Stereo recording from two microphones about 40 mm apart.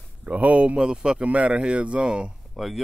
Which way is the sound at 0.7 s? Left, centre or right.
Centre.